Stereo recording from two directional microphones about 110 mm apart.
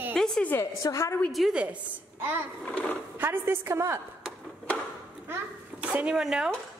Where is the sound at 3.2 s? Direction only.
20° right (ahead or behind).